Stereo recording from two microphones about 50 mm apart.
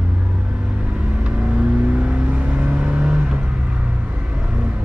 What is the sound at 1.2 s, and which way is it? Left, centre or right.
Vehicle, right.